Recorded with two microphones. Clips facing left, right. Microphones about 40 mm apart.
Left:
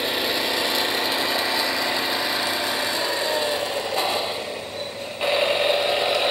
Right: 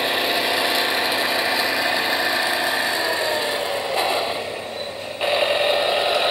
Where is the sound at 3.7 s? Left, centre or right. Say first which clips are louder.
Right 2 dB; centre.